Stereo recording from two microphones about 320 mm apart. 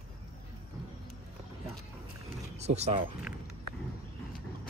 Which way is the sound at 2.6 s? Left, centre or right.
Centre.